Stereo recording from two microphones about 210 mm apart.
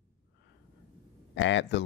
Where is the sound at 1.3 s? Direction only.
60° left (ahead or behind).